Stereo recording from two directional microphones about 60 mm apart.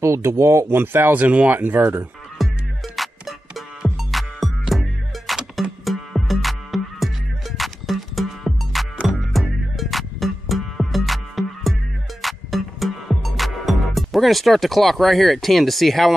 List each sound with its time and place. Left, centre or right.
0.0 s speech: right
0.7 s speech: right
2.3 s music: centre